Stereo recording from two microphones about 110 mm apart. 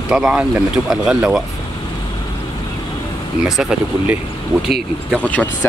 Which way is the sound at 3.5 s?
5° right (ahead or behind).